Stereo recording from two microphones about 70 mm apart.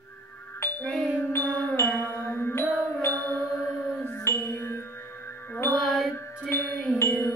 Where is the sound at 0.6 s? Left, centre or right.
Left.